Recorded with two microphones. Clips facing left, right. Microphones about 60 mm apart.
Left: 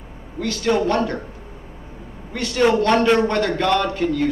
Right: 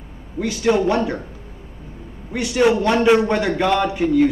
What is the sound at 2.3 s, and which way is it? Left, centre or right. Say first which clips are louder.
A man's voice: right 1 dB; centre.